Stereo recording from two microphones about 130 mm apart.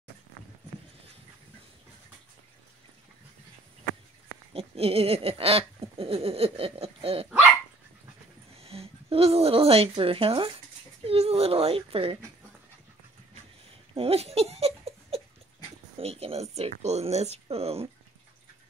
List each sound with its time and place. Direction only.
4.6 s a sound: 50° right (ahead or behind)
8.5 s speech: 50° right (ahead or behind)
13.9 s giggle: 50° right (ahead or behind)
16.0 s speech: 50° right (ahead or behind)